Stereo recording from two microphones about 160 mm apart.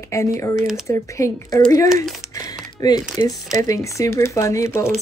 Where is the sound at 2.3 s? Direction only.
20° left (ahead or behind).